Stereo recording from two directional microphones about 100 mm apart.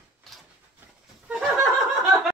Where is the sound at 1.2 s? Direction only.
5° right (ahead or behind).